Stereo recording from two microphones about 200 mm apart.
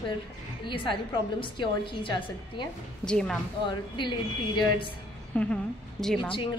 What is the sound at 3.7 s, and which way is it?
Speech, 25° left (ahead or behind).